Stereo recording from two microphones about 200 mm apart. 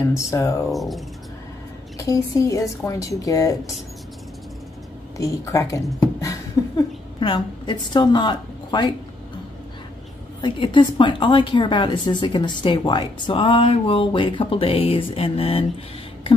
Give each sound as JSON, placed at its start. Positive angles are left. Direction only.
{"t": 0.1, "sound": "a woman's voice", "side_deg": 15}
{"t": 0.7, "sound": "speech", "side_deg": 0}
{"t": 2.0, "sound": "a woman's voice", "side_deg": 15}
{"t": 5.1, "sound": "a woman's voice", "side_deg": 15}
{"t": 6.6, "sound": "a sound", "side_deg": 15}
{"t": 7.2, "sound": "a woman's voice", "side_deg": 25}
{"t": 10.4, "sound": "a woman's voice", "side_deg": 25}